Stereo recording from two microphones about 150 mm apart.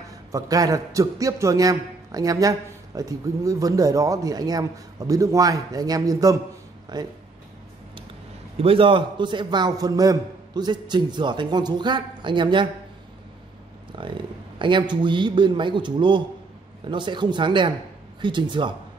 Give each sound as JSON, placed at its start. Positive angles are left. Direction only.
{"t": 0.3, "sound": "a man's voice", "side_deg": -25}
{"t": 8.5, "sound": "a man's voice", "side_deg": -40}
{"t": 13.9, "sound": "a man's voice", "side_deg": -35}